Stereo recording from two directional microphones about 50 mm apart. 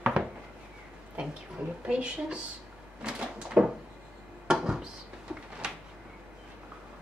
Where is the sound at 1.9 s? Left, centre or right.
Right.